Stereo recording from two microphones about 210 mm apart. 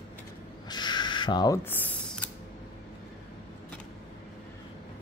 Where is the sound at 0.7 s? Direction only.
20° left (ahead or behind).